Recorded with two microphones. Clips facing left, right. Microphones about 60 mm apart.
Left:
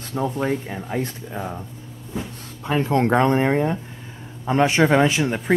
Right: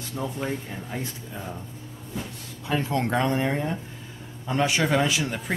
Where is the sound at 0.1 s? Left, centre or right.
Left.